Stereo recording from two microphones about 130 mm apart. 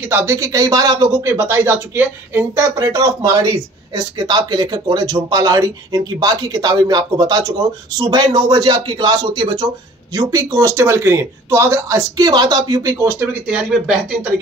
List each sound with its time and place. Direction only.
0.1 s speech: 20° right (ahead or behind)
13.6 s speech: 5° right (ahead or behind)